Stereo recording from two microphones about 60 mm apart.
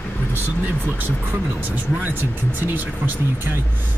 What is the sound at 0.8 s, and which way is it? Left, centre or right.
Speech, right.